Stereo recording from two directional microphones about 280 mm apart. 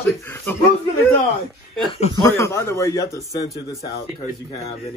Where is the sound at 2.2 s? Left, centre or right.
Centre.